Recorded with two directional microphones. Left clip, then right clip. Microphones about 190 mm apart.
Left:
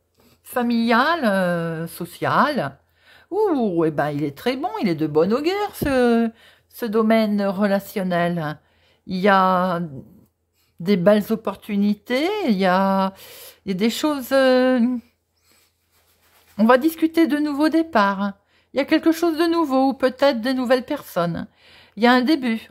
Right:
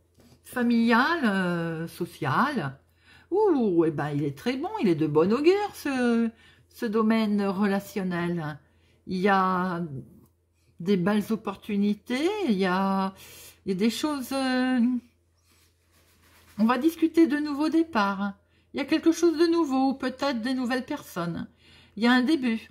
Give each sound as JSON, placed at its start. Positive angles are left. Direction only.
{"t": 0.5, "sound": "a woman's voice", "side_deg": 40}
{"t": 16.5, "sound": "a woman's voice", "side_deg": 40}